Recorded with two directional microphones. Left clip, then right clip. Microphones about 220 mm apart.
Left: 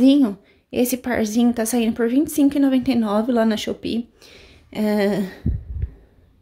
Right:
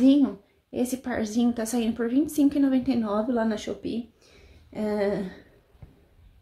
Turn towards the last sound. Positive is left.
turn(degrees=40)  # may be behind; listen again after turning